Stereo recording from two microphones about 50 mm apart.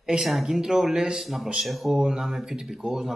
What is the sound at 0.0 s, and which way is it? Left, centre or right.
Speech, centre.